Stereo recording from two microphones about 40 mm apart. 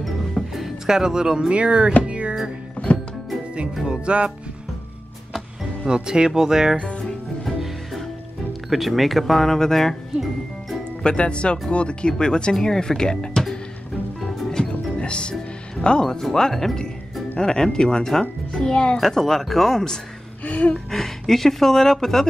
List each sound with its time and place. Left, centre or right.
0.0 s music: centre; by 2.3 s right
2.9 s music: left
3.8 s music: right
5.9 s speech: right
7.6 s music: centre
8.6 s speech: centre
11.0 s speech: left
14.7 s music: left
17.4 s a child's voice: centre
18.9 s speech: centre
20.4 s a sound: left
20.9 s speech: centre